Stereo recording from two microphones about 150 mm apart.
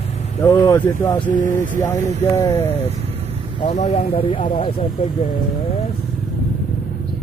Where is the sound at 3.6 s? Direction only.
45° left (ahead or behind).